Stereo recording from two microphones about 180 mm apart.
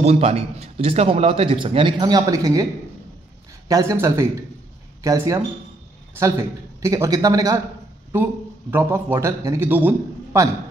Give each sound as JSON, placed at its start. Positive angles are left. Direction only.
{"t": 0.0, "sound": "a man's voice", "side_deg": -35}
{"t": 3.6, "sound": "speech", "side_deg": -20}
{"t": 6.8, "sound": "a man's voice", "side_deg": -15}